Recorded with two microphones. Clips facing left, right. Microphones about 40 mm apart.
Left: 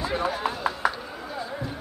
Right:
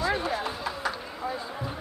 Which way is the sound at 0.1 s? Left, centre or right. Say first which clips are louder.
Left 2 dB; centre.